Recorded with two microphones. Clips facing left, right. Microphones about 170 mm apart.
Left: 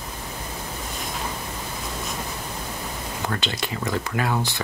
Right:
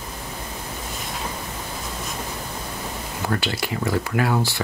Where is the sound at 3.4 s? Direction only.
20° left (ahead or behind).